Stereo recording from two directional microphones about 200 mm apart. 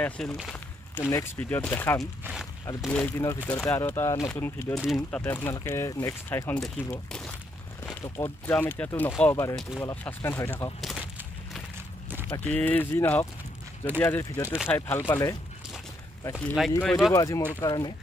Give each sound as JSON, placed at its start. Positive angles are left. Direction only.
{"t": 0.0, "sound": "speech", "side_deg": 10}
{"t": 2.0, "sound": "speech", "side_deg": 0}
{"t": 10.8, "sound": "a sound", "side_deg": -5}
{"t": 12.4, "sound": "speech", "side_deg": 10}
{"t": 17.1, "sound": "speech", "side_deg": 15}